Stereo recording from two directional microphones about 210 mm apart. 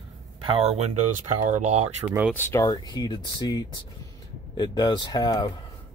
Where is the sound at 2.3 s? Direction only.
10° left (ahead or behind).